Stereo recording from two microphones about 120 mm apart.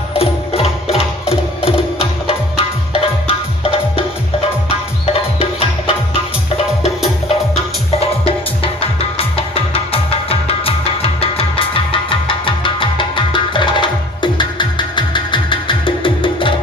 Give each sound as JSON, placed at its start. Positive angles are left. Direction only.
{"t": 0.2, "sound": "music", "side_deg": 55}
{"t": 5.4, "sound": "music", "side_deg": 50}
{"t": 9.7, "sound": "music", "side_deg": 55}